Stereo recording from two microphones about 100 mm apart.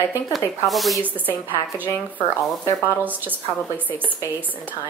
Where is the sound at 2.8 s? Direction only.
15° right (ahead or behind).